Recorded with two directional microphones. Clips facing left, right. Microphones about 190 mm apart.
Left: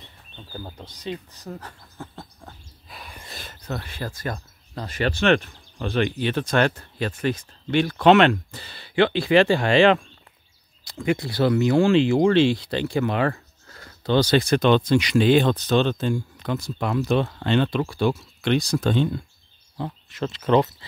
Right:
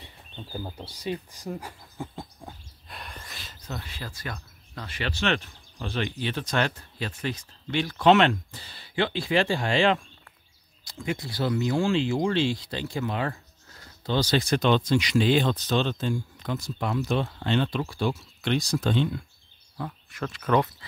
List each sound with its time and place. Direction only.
0.0 s bird: 10° right (ahead or behind)
0.8 s speech: 10° right (ahead or behind)
1.3 s a sound: 10° right (ahead or behind)
2.9 s snort: centre (ahead or behind)
3.3 s speech: 55° left (ahead or behind)
19.8 s speech: 25° left (ahead or behind)